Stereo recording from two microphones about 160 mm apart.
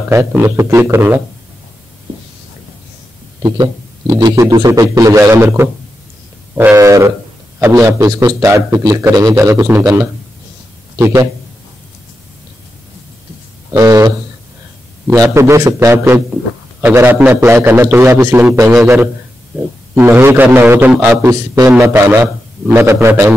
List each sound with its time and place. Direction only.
0.1 s a man's voice: 15° right (ahead or behind)
3.4 s a man's voice: 25° right (ahead or behind)
13.7 s a man's voice: 20° right (ahead or behind)